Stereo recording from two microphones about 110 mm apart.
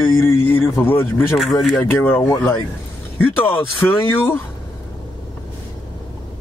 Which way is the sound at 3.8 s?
20° left (ahead or behind).